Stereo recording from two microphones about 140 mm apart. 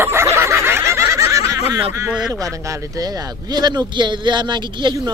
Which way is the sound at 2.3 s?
25° right (ahead or behind).